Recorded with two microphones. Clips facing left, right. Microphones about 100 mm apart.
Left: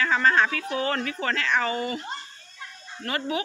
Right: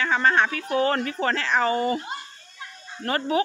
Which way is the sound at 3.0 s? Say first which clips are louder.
Right 5 dB; 35° right (ahead or behind).